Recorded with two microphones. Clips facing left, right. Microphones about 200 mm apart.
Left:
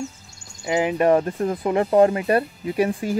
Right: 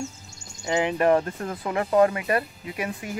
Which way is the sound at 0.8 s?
20° left (ahead or behind).